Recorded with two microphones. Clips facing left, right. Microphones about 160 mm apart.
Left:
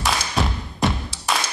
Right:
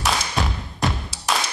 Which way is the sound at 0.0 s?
Centre (ahead or behind).